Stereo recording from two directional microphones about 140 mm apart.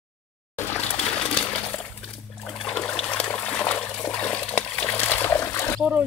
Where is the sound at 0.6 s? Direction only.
15° left (ahead or behind).